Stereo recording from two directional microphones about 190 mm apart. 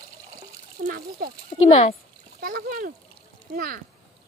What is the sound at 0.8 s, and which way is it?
Speech, 50° right (ahead or behind).